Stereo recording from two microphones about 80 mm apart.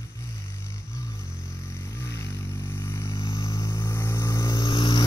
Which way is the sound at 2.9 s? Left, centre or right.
Left.